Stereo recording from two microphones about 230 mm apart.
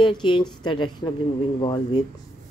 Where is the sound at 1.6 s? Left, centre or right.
Centre.